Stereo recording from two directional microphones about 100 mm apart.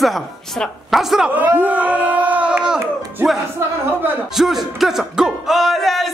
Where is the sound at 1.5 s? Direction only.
15° right (ahead or behind).